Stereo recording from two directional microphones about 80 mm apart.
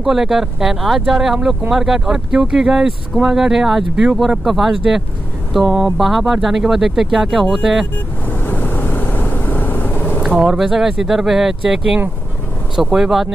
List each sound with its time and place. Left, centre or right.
0.0 s speech: centre
8.3 s vehicle: left
10.3 s speech: centre